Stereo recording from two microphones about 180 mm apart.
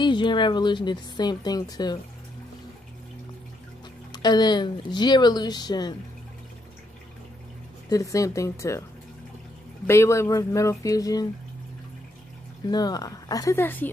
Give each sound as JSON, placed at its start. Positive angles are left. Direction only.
{"t": 0.0, "sound": "speech", "side_deg": 25}
{"t": 4.1, "sound": "speech", "side_deg": 25}
{"t": 7.9, "sound": "speech", "side_deg": 20}
{"t": 9.8, "sound": "speech", "side_deg": 15}
{"t": 12.6, "sound": "speech", "side_deg": 20}